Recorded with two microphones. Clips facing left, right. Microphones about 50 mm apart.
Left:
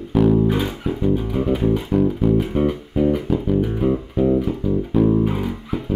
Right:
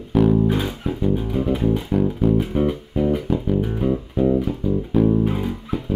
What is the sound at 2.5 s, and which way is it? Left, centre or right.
Music, centre.